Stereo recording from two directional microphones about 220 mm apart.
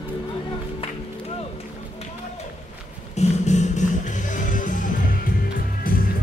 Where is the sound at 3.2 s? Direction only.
30° left (ahead or behind).